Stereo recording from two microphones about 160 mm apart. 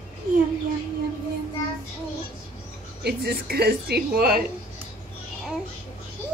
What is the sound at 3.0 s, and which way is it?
Speech, 80° right.